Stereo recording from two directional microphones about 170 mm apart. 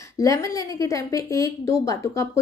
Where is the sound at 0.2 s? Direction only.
20° left (ahead or behind).